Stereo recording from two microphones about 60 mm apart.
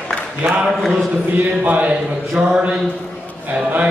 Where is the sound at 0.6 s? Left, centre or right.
Centre.